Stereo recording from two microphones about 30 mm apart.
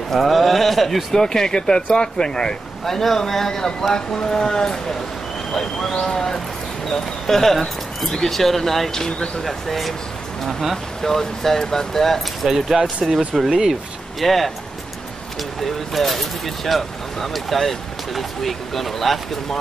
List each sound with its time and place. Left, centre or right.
0.1 s speech: centre
1.1 s speech: centre
1.8 s speech: left
2.8 s speech: centre; by 4.7 s left
5.5 s speech: centre
11.0 s speech: centre
12.4 s speech: centre
12.8 s speech: centre
15.6 s speech: centre